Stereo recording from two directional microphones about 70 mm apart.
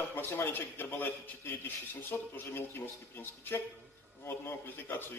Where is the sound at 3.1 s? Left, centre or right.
Left.